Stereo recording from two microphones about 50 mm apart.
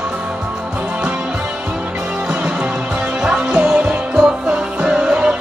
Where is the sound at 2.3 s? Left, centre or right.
Right.